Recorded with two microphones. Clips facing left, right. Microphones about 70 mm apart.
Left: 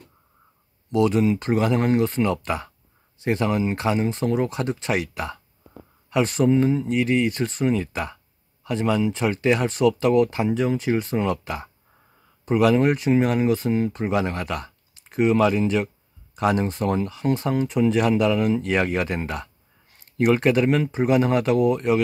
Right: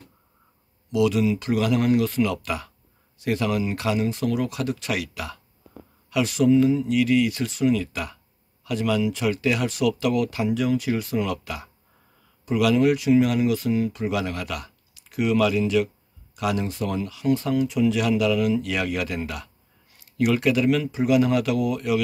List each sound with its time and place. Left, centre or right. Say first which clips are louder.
0.8 s speech: left 1 dB; left